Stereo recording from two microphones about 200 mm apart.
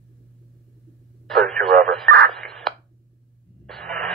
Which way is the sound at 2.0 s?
40° right (ahead or behind).